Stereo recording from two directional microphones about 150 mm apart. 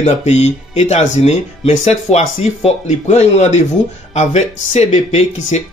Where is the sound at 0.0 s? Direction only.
45° left (ahead or behind).